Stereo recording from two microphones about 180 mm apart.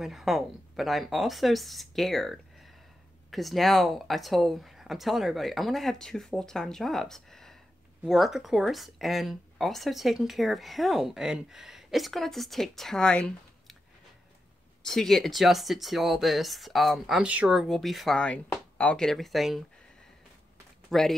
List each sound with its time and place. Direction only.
0.0 s speech: centre (ahead or behind)
14.9 s speech: centre (ahead or behind)
20.9 s speech: centre (ahead or behind)